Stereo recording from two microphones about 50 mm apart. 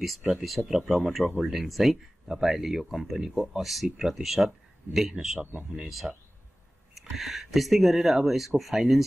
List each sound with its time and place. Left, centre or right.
0.2 s speech: centre
5.4 s speech: right
5.7 s speech: centre